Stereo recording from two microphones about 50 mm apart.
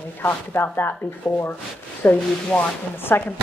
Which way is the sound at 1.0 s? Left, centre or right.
Left.